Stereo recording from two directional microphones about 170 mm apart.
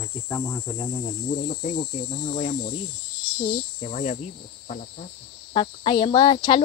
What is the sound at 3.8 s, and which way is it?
Cricket, 40° left (ahead or behind).